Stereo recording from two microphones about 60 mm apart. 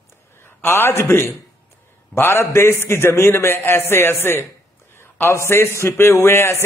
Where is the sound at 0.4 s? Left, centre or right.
Left.